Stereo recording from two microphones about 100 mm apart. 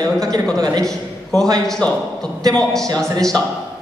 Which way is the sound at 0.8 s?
5° left (ahead or behind).